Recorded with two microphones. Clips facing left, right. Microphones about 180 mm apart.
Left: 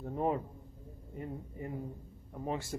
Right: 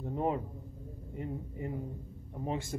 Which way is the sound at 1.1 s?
20° right (ahead or behind).